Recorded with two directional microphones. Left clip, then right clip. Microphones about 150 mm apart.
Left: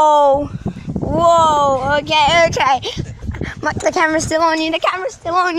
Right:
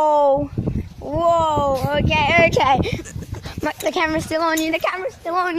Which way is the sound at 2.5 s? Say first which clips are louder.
Left 2 dB; 45° right (ahead or behind).